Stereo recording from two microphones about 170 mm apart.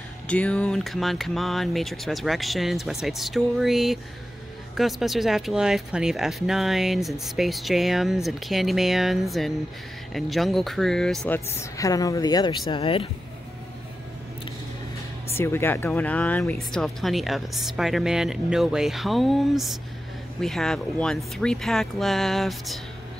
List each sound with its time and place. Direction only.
0.3 s speech: 5° left (ahead or behind); by 13.1 s 30° left (ahead or behind)
15.3 s speech: 15° left (ahead or behind)